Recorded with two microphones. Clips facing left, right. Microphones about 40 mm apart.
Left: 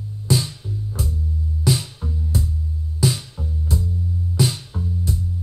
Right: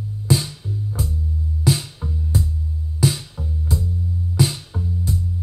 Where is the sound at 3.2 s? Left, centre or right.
Centre.